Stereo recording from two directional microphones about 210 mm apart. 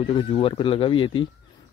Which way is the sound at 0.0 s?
25° left (ahead or behind).